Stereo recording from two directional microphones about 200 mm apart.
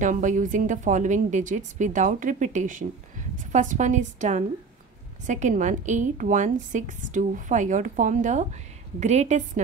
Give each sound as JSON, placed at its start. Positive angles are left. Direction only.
{"t": 0.0, "sound": "speech", "side_deg": -40}